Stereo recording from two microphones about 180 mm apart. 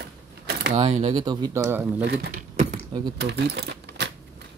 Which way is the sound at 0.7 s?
40° right (ahead or behind).